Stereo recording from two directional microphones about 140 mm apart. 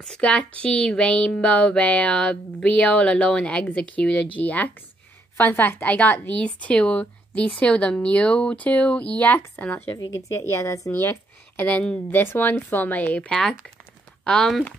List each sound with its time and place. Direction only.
0.0 s a woman's voice: 5° left (ahead or behind)
9.9 s a woman's voice: 25° left (ahead or behind); by 14.7 s 5° left (ahead or behind)